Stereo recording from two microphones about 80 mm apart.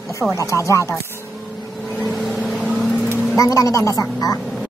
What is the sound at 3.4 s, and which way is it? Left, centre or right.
Speech, left.